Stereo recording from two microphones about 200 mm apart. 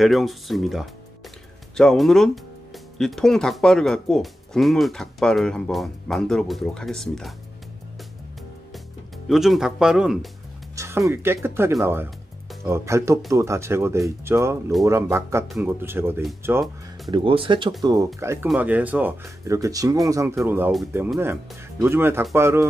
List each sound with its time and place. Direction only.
0.0 s speech: centre (ahead or behind)
9.3 s speech: centre (ahead or behind)
10.8 s speech: 15° right (ahead or behind)
17.1 s speech: 25° right (ahead or behind)